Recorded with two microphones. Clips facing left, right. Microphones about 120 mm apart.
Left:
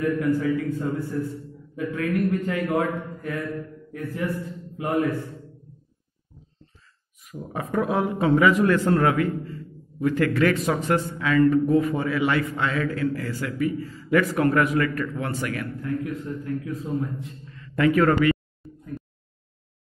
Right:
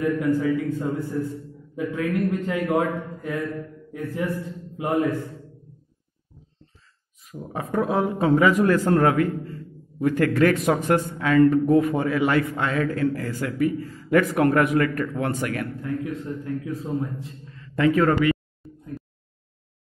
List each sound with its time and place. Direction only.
0.0 s a man's voice: 20° right (ahead or behind)
3.2 s mantra: 20° right (ahead or behind)
4.7 s a man's voice: 20° right (ahead or behind)
7.5 s a man's voice: 30° right (ahead or behind); by 15.6 s 45° right (ahead or behind)
15.8 s a man's voice: 20° right (ahead or behind)
16.8 s a man's voice: 30° right (ahead or behind)
18.3 s a sound: 5° right (ahead or behind)